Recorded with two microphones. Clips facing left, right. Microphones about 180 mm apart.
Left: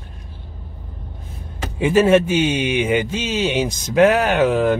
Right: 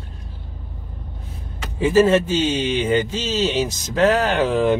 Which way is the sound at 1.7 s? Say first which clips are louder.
Left 1 dB; 20° left (ahead or behind).